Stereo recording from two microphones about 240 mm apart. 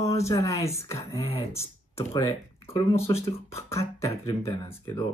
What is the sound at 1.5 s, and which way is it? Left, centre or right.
Speech, centre.